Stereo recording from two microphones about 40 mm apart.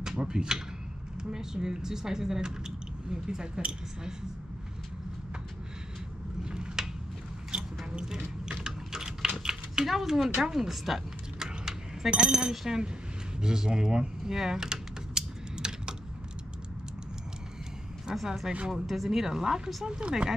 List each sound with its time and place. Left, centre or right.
0.0 s speech: centre
6.4 s a sound: centre
8.6 s typing: centre
9.8 s speech: centre
11.3 s vehicle: centre
12.1 s speech: right
13.4 s typing: centre
18.1 s speech: centre
19.9 s speech: right